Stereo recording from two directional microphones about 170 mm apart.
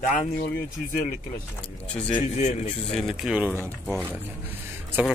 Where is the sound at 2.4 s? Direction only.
40° left (ahead or behind).